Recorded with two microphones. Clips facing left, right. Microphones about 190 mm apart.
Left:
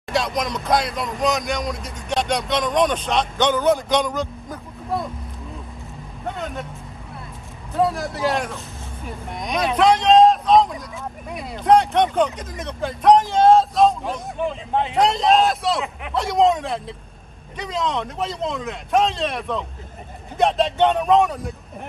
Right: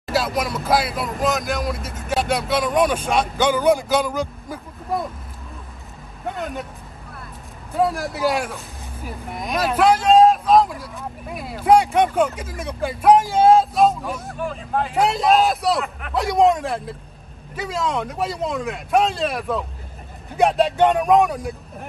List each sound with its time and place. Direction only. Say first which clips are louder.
0.0 s speech: right 1 dB; 5° right (ahead or behind)
6.3 s speech: right 3 dB; centre (ahead or behind)
7.7 s speech: even; centre (ahead or behind)
14.3 s speech: left 2 dB; 25° left (ahead or behind)
15.0 s speech: even; 5° right (ahead or behind)